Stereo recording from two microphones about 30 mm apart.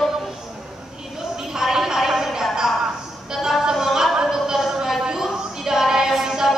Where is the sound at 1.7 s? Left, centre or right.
Centre.